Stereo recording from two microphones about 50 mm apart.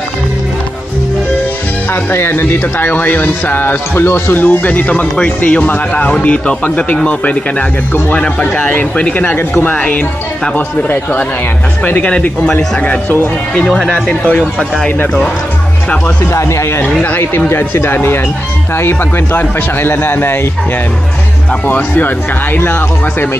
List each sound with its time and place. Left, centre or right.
2.1 s speech: left
12.1 s speech: left
13.8 s speech: left
16.3 s speech: left
17.5 s a man's voice: left
21.6 s a man's voice: left